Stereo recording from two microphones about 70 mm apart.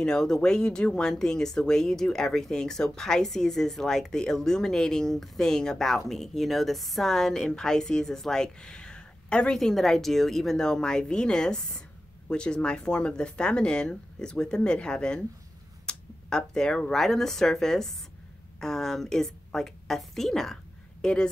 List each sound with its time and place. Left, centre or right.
0.0 s a woman's voice: centre